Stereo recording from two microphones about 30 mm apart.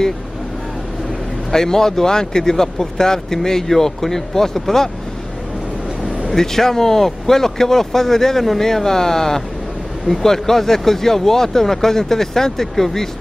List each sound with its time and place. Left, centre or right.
1.5 s speech: centre
6.3 s speech: centre